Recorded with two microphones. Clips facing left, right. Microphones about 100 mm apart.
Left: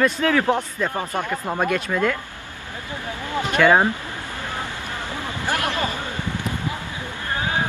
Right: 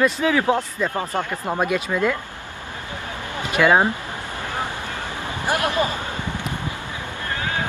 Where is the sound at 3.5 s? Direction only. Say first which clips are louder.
Even; 10° right (ahead or behind).